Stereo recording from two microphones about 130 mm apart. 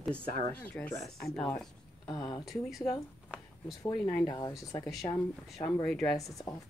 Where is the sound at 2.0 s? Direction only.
35° left (ahead or behind).